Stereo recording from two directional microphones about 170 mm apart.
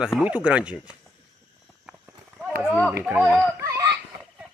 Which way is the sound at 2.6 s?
Centre (ahead or behind).